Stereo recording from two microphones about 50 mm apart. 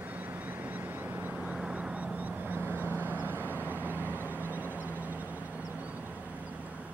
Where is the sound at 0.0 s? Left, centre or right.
Right.